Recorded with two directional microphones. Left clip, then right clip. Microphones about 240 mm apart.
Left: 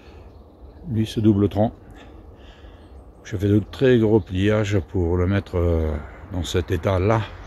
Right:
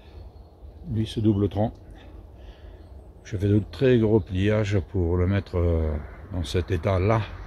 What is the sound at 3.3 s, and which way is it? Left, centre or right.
Speech, centre.